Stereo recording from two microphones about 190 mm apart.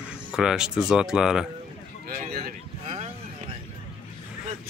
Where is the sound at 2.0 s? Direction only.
55° right (ahead or behind).